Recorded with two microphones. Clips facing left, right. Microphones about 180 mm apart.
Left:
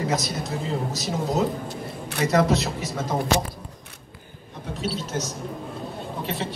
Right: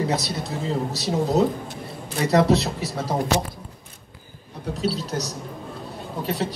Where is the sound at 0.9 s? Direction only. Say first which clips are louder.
Right 5 dB; 35° right (ahead or behind).